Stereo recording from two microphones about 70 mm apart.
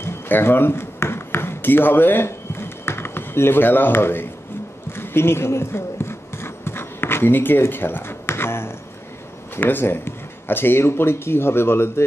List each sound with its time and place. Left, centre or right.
0.0 s speech: left
4.9 s a sound: left
9.6 s speech: left